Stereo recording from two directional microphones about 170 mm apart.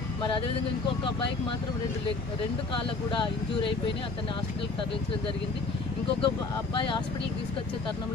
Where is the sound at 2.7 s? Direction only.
30° left (ahead or behind).